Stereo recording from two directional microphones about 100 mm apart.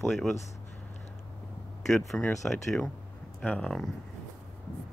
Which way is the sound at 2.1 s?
5° left (ahead or behind).